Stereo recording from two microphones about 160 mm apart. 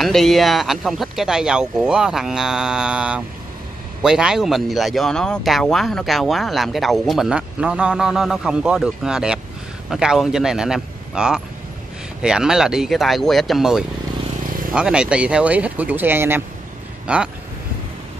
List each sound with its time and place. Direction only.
0.0 s speech: centre (ahead or behind)